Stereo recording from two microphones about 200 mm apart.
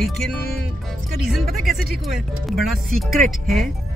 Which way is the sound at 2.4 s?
Centre (ahead or behind).